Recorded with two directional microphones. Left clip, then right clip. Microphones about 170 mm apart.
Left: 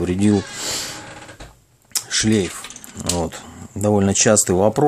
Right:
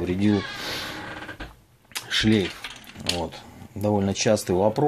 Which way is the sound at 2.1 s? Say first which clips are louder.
Left 3 dB; 15° left (ahead or behind).